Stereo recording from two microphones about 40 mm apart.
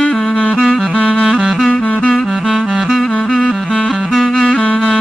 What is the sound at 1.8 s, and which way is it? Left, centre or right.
Music, left.